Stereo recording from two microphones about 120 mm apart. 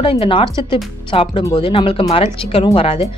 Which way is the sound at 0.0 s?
50° left (ahead or behind).